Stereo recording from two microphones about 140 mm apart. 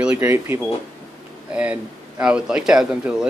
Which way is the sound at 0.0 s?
10° right (ahead or behind).